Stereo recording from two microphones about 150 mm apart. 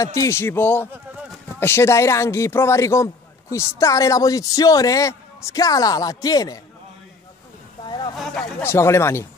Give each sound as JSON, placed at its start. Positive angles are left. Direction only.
{"t": 0.0, "sound": "a man's voice", "side_deg": 20}
{"t": 8.2, "sound": "a sound", "side_deg": 5}
{"t": 8.6, "sound": "a man's voice", "side_deg": 15}